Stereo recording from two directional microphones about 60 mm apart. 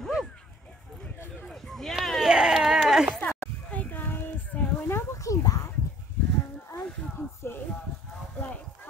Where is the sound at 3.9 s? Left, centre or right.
Left.